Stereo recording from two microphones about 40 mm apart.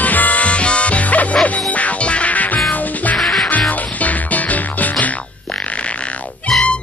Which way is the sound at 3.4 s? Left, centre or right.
Left.